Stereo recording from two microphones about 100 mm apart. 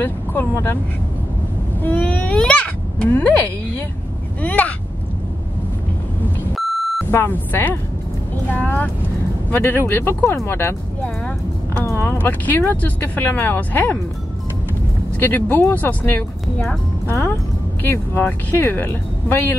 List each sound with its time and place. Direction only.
0.0 s speech: 20° left (ahead or behind)
1.8 s speech: 15° left (ahead or behind)
4.4 s speech: 15° left (ahead or behind)
7.1 s speech: 25° left (ahead or behind)
15.1 s speech: 20° left (ahead or behind)
17.8 s speech: 25° left (ahead or behind)